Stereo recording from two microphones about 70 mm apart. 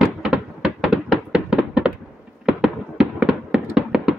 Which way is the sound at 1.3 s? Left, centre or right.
Centre.